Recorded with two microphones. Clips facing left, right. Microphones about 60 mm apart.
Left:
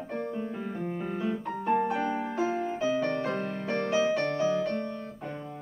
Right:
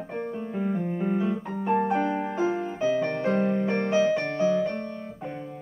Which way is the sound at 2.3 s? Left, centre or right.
Centre.